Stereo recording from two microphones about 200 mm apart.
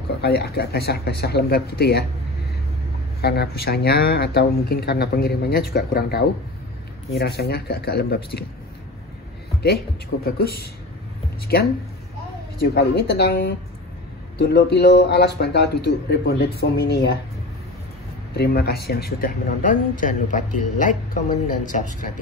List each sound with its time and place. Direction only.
0.2 s speech: 50° left (ahead or behind)
3.2 s speech: 50° left (ahead or behind)
10.3 s speech: 50° left (ahead or behind)
12.6 s speech: 60° left (ahead or behind)
18.3 s speech: 55° left (ahead or behind)